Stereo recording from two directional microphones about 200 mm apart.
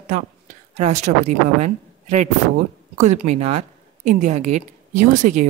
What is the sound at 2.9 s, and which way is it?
A woman's voice, 35° right (ahead or behind).